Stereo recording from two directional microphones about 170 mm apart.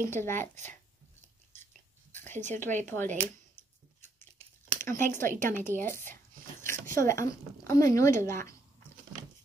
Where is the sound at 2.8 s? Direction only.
15° left (ahead or behind).